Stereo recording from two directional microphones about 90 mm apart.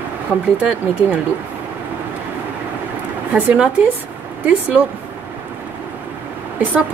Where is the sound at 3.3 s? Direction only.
15° right (ahead or behind).